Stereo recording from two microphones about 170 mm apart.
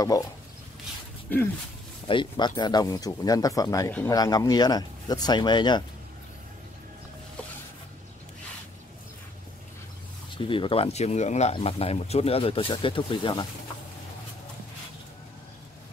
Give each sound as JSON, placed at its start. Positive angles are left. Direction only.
{"t": 2.0, "sound": "speech", "side_deg": 30}
{"t": 10.3, "sound": "speech", "side_deg": 30}